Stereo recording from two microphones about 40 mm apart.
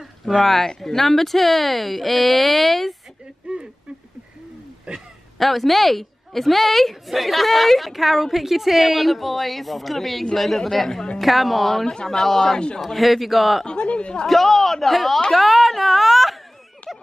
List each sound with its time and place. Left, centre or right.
0.4 s a woman's voice: centre
3.4 s a sound: right
4.9 s a woman's voice: centre
11.9 s speech: centre
12.5 s a man's voice: left
12.8 s a woman's voice: centre
13.7 s a sound: left
14.2 s a woman's voice: centre
16.8 s a sound: left